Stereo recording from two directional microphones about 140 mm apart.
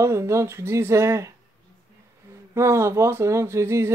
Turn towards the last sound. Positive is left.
turn(degrees=-20)  # may be behind; listen again after turning